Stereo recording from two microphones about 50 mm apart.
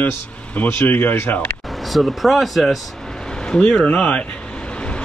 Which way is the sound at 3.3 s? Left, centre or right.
Centre.